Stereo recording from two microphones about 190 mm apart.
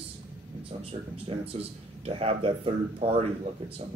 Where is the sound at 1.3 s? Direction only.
30° right (ahead or behind).